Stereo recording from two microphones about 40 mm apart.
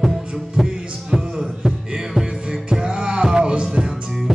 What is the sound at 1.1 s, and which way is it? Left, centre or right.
Music, centre.